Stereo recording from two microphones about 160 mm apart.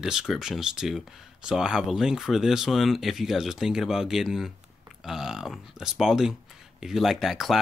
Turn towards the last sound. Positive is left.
turn(degrees=0)  # may be behind; listen again after turning